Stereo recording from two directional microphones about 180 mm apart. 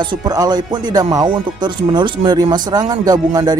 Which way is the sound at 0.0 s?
25° right (ahead or behind).